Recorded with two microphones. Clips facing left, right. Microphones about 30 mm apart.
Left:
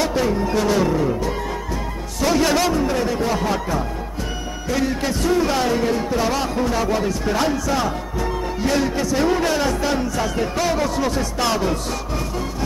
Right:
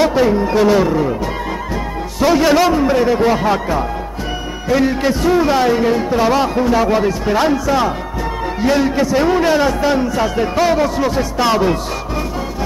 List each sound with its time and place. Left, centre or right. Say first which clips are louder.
0.0 s a man's voice: right 7 dB; centre